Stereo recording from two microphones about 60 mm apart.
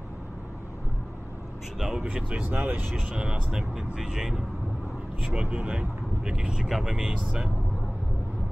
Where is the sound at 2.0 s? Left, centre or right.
Centre.